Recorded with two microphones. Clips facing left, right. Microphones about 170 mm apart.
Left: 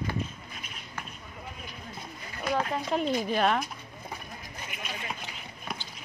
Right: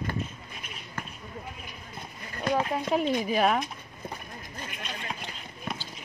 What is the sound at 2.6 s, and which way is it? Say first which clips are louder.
Speech: right 2 dB; 5° right (ahead or behind).